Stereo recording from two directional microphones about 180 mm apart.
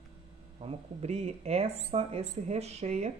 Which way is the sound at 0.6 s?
35° right (ahead or behind).